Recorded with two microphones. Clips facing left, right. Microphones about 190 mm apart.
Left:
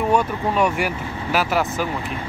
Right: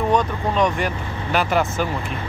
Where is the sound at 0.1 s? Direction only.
10° left (ahead or behind).